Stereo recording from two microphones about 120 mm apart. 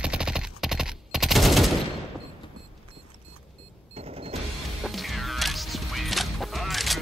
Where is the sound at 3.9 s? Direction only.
55° right (ahead or behind).